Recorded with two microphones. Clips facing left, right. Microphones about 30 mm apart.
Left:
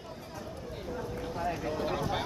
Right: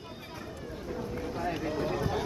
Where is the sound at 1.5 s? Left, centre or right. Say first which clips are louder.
Right 2 dB; centre.